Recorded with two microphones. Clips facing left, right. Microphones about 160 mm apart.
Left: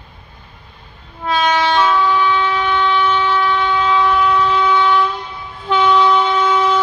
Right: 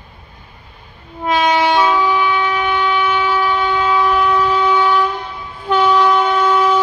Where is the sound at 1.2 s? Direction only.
10° right (ahead or behind).